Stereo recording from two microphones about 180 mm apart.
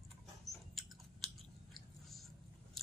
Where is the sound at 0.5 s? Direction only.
Centre (ahead or behind).